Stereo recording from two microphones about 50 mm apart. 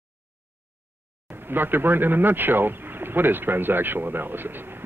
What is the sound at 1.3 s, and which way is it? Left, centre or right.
Speech, right.